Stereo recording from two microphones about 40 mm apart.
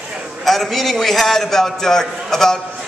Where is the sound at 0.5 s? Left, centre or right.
Centre.